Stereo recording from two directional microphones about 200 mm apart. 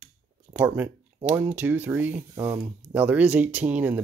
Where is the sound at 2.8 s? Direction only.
10° right (ahead or behind).